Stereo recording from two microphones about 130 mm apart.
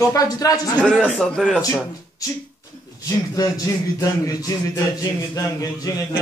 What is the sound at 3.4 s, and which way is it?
Speech, 30° left (ahead or behind).